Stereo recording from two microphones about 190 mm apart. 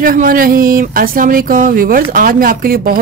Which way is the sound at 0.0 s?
50° right (ahead or behind).